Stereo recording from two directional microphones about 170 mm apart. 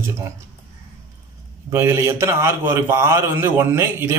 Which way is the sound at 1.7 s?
15° right (ahead or behind).